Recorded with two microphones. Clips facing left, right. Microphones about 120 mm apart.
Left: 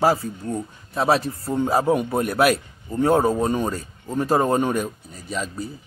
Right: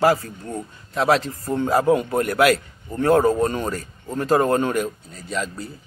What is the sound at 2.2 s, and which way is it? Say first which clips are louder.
Speech: right 1 dB; 90° right.